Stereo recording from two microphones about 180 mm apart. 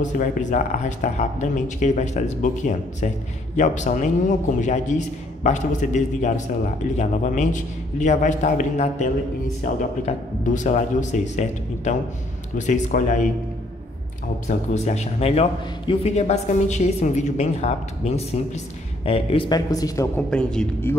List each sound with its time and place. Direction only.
0.0 s speech: 45° left (ahead or behind)
14.5 s a man's voice: 40° left (ahead or behind); by 20.1 s 20° left (ahead or behind)
20.2 s a man's voice: 5° left (ahead or behind)